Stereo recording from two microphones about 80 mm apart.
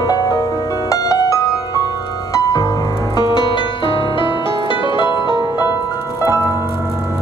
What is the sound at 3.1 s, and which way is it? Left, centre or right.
Music, left.